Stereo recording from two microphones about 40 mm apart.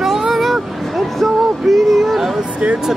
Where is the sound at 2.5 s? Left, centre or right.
Right.